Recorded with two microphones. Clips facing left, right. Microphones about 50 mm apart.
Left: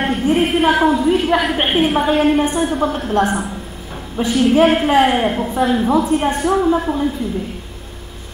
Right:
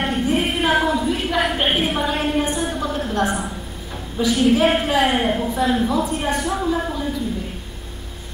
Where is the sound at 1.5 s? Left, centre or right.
Left.